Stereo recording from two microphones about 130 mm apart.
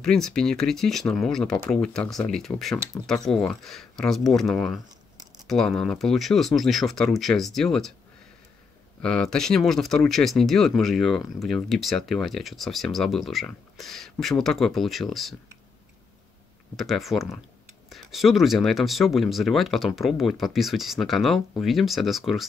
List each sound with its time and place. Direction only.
0.0 s speech: 5° left (ahead or behind)
9.0 s speech: 5° left (ahead or behind)
16.7 s speech: centre (ahead or behind)